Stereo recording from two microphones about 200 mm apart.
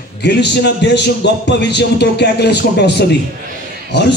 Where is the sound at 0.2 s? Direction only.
55° left (ahead or behind).